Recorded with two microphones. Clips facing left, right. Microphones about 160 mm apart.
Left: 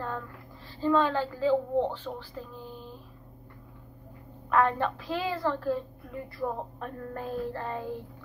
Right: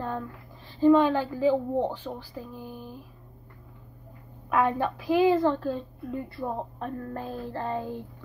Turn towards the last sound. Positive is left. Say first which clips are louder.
# right 1 dB
turn(degrees=-30)  # may be behind; listen again after turning